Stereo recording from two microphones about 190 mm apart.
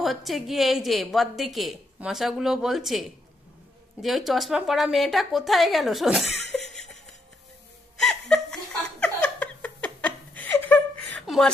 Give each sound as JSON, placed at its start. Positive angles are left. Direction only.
{"t": 0.0, "sound": "a woman's voice", "side_deg": 0}
{"t": 8.0, "sound": "laughter", "side_deg": 0}